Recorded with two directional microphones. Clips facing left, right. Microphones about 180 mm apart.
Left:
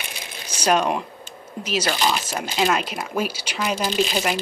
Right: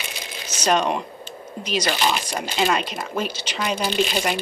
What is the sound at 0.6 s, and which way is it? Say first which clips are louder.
Speech: left 1 dB; 5° left (ahead or behind).